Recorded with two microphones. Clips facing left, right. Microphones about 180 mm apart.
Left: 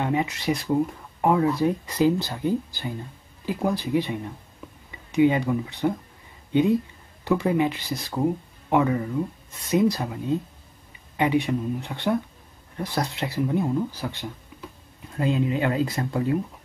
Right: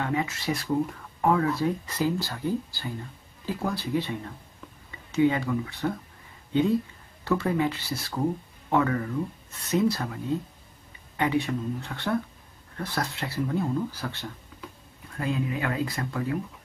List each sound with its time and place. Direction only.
0.0 s speech: 20° left (ahead or behind)
14.5 s a sound: 15° left (ahead or behind)
15.1 s speech: 25° left (ahead or behind)